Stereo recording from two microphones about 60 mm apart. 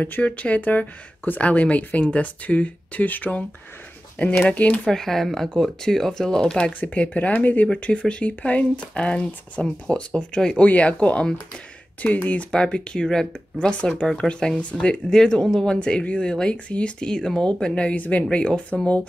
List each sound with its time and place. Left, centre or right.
0.0 s speech: left
4.8 s speech: centre
6.8 s speech: left